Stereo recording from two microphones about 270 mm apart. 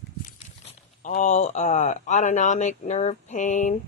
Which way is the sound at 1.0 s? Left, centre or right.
Left.